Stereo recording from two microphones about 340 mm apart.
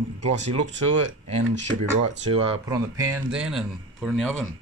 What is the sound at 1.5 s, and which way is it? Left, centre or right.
Speech, right.